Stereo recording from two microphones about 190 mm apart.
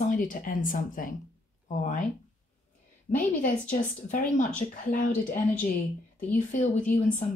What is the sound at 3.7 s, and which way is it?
A woman's voice, 40° left (ahead or behind).